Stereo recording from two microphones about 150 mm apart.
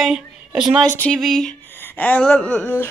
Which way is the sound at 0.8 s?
10° left (ahead or behind).